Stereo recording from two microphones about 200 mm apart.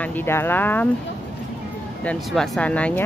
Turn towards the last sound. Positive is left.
turn(degrees=5)  # may be behind; listen again after turning